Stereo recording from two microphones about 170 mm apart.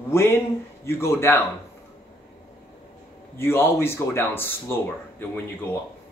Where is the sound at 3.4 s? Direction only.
15° left (ahead or behind).